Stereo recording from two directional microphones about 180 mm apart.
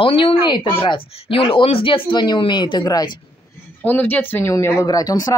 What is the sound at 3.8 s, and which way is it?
Speech, 10° left (ahead or behind).